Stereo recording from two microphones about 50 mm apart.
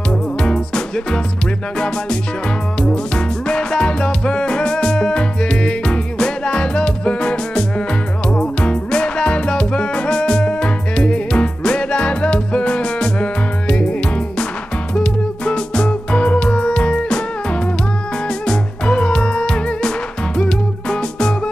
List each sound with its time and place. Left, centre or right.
0.4 s music: centre
2.8 s music: centre
15.0 s music: centre